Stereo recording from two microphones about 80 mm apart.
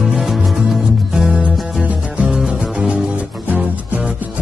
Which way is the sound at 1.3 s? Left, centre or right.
Centre.